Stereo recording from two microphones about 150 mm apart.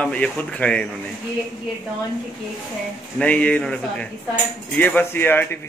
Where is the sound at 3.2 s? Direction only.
10° left (ahead or behind).